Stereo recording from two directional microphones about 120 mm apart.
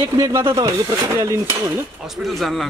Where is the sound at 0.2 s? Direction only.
30° right (ahead or behind).